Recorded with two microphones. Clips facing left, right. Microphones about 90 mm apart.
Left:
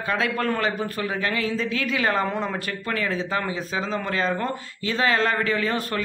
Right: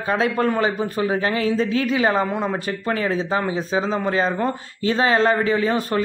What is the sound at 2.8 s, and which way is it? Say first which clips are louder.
A man's voice: right 4 dB; 30° right (ahead or behind).